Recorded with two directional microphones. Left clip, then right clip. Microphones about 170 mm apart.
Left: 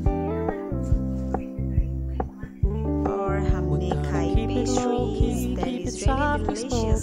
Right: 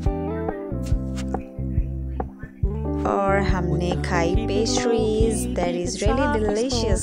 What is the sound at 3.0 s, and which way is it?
Music, 35° right (ahead or behind).